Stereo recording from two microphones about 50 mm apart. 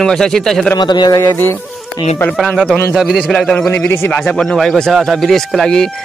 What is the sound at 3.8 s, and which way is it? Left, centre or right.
Speech, left.